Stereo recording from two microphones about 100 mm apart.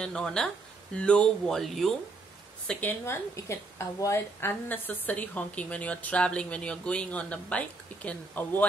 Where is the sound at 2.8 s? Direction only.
25° left (ahead or behind).